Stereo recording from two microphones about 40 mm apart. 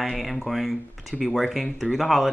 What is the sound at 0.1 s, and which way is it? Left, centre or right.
Speech, centre.